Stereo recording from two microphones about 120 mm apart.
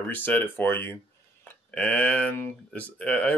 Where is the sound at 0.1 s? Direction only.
15° left (ahead or behind).